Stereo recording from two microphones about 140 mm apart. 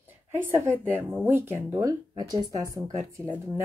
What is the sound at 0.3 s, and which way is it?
A woman's voice, 15° right (ahead or behind).